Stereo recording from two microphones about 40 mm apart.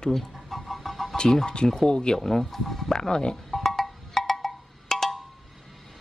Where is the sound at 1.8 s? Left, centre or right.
Left.